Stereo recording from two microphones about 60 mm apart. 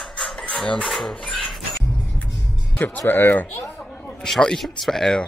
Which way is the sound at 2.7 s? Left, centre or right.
Left.